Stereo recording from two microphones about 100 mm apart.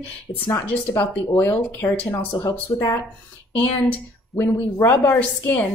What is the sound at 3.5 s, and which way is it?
A woman's voice, 15° left (ahead or behind).